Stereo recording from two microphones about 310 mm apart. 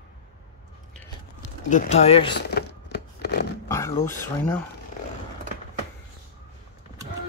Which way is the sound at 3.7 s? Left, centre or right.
Centre.